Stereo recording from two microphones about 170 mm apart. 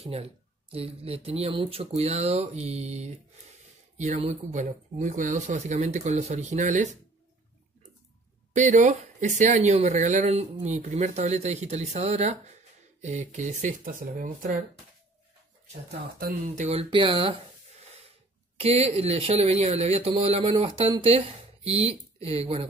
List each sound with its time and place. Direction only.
0.0 s speech: 35° right (ahead or behind)
8.5 s speech: 45° right (ahead or behind)
15.9 s speech: 65° right (ahead or behind)
16.5 s speech: 35° right (ahead or behind)